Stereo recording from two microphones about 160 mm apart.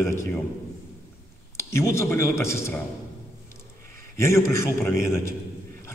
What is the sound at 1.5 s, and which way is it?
A man's voice, 15° left (ahead or behind).